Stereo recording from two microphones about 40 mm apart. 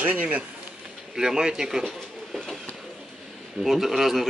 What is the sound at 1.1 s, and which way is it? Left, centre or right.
Speech, centre.